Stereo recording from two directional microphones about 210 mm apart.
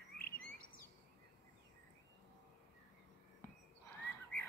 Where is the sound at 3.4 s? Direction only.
10° left (ahead or behind).